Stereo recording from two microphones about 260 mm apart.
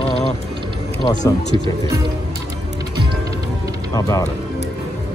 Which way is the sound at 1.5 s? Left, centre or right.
Centre.